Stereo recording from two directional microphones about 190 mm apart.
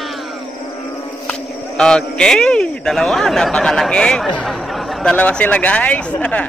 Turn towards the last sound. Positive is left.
turn(degrees=5)  # may be behind; listen again after turning